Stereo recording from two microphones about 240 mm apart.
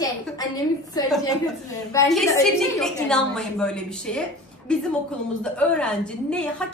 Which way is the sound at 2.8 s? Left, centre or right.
Centre.